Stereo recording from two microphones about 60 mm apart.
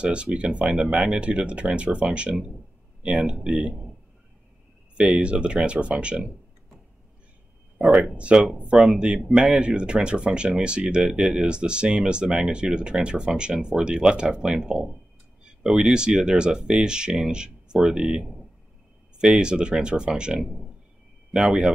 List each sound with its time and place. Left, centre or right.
0.0 s speech: centre
4.9 s speech: centre
8.0 s speech: centre